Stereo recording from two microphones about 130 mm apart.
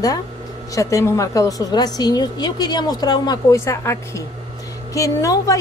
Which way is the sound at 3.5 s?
20° left (ahead or behind).